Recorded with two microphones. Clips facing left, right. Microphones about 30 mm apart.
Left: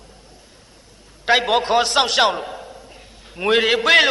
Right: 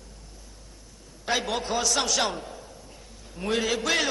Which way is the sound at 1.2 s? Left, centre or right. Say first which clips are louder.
Left 11 dB; left.